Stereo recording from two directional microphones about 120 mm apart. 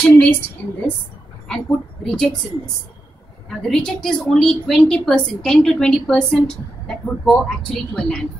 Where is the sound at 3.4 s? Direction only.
5° left (ahead or behind).